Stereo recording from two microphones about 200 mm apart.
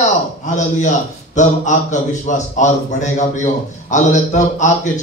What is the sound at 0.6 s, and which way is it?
A man's voice, 35° left (ahead or behind).